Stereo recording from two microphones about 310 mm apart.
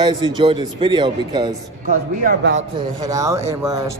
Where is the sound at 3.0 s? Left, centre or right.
Centre.